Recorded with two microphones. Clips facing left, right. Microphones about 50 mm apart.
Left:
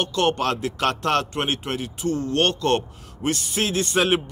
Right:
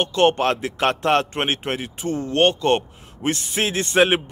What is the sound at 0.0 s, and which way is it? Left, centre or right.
Speech, right.